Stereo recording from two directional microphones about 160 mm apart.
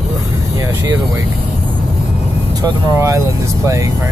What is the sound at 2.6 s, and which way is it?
Speech, 20° right (ahead or behind).